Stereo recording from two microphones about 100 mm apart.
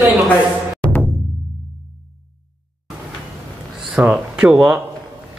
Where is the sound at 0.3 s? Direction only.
15° left (ahead or behind).